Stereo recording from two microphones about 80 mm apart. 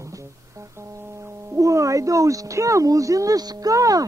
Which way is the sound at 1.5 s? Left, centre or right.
Right.